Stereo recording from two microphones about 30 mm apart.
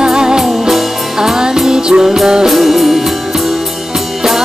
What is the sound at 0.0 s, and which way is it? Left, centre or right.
Music, right.